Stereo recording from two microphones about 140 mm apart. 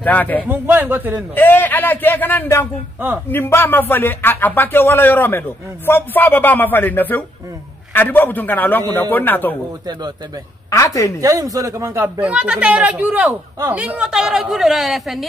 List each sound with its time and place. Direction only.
0.0 s speech: 10° left (ahead or behind)
0.5 s speech: 15° right (ahead or behind)
1.3 s speech: 15° left (ahead or behind)
10.7 s a woman's voice: 25° left (ahead or behind)
11.1 s speech: 25° right (ahead or behind); by 15.2 s centre (ahead or behind)